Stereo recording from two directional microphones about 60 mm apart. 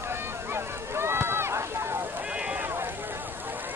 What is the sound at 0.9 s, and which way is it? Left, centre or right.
Run, right.